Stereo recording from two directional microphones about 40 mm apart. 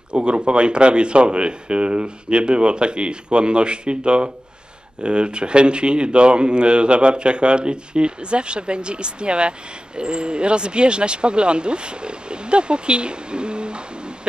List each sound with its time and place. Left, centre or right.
0.1 s speech: right